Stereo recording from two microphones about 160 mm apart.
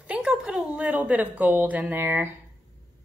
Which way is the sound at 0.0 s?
5° right (ahead or behind).